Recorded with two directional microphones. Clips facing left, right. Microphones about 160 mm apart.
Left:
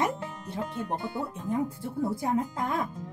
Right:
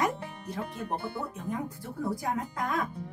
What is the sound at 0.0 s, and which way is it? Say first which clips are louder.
Music: left 1 dB; 25° left (ahead or behind).